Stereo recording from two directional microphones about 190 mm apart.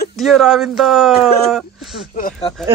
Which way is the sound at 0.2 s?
Centre (ahead or behind).